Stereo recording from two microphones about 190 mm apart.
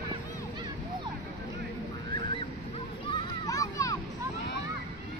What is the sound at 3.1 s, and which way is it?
Children playing, 20° left (ahead or behind).